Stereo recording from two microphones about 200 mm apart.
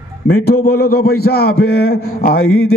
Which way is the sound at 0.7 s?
50° left (ahead or behind).